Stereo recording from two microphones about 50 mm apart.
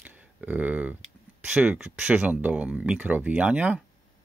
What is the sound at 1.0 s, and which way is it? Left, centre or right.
Speech, centre.